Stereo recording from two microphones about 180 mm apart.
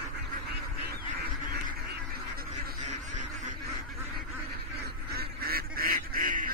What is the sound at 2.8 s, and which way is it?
Duck, 40° right (ahead or behind).